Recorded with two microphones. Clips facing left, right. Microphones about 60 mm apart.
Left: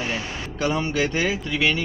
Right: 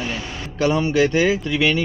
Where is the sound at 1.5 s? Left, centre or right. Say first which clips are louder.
Right 3 dB; centre.